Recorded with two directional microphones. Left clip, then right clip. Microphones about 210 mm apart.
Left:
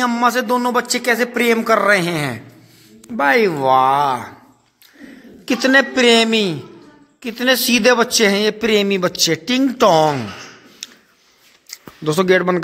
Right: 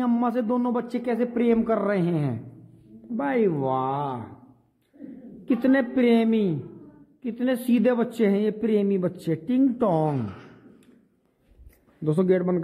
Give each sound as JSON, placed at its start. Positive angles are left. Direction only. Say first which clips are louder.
{"t": 0.0, "sound": "a man's voice", "louder": "left 9 dB", "side_deg": 0}
{"t": 5.4, "sound": "a man's voice", "louder": "left 9 dB", "side_deg": 10}
{"t": 12.2, "sound": "a man's voice", "louder": "left 9 dB", "side_deg": 10}